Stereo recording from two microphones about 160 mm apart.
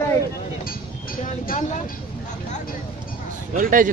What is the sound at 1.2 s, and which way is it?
Speech, 60° left (ahead or behind).